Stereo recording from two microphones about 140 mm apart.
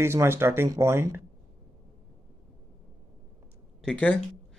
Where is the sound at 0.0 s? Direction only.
15° right (ahead or behind).